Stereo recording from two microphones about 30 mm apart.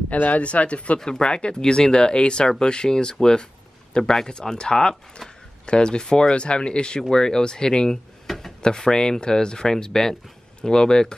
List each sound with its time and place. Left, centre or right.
0.4 s speech: left
0.9 s speech: left
4.3 s speech: left
7.9 s drawer open or close: centre
8.6 s speech: left